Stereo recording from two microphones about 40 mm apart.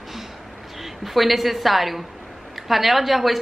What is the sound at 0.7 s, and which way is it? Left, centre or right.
A woman's voice, centre.